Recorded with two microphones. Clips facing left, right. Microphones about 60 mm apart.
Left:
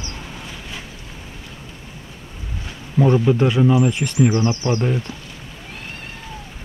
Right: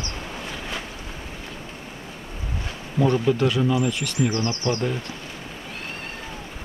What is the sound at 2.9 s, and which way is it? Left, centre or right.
Speech, centre.